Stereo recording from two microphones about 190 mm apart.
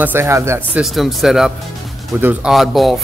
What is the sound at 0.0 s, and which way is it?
Speech, 10° right (ahead or behind).